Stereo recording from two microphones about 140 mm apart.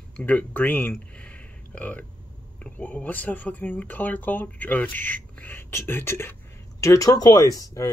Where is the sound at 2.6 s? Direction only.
10° left (ahead or behind).